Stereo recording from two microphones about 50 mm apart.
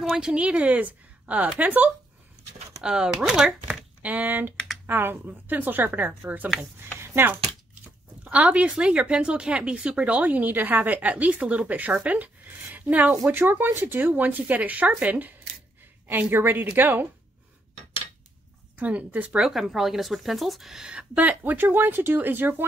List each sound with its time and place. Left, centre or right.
0.1 s speech: centre; by 1.9 s right
2.8 s speech: centre
4.0 s speech: right
4.8 s speech: right
7.0 s a sound: right
8.2 s speech: right
16.2 s speech: right
18.8 s speech: right
19.4 s speech: centre
21.1 s speech: right